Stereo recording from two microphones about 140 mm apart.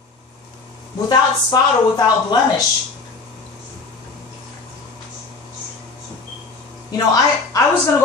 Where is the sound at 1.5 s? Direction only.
30° left (ahead or behind).